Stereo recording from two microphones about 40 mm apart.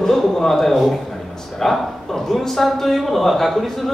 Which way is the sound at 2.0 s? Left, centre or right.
Centre.